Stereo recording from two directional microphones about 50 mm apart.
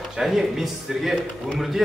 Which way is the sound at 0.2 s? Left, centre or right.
Centre.